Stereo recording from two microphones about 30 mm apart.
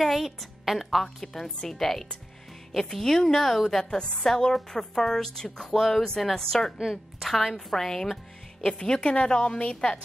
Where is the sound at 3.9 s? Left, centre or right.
Left.